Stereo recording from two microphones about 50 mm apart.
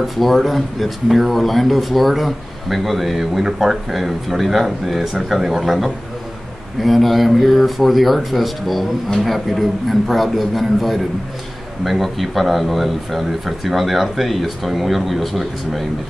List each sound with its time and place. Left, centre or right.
0.0 s speech: centre